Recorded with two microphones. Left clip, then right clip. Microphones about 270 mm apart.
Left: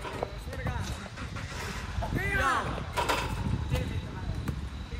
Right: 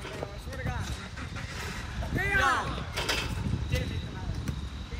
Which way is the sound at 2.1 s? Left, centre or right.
Centre.